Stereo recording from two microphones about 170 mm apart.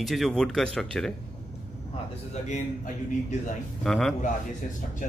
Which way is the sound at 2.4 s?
45° left (ahead or behind).